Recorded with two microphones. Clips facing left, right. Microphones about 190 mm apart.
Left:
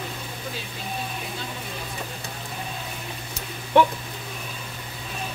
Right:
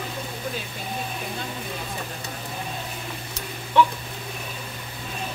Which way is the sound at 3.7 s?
50° left (ahead or behind).